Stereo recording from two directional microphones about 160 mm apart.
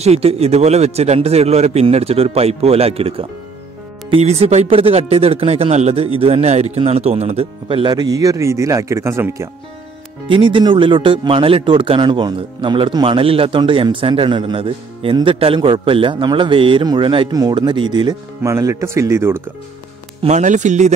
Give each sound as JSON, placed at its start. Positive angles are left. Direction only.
{"t": 0.0, "sound": "speech", "side_deg": -40}
{"t": 10.2, "sound": "speech", "side_deg": -30}
{"t": 20.2, "sound": "speech", "side_deg": -50}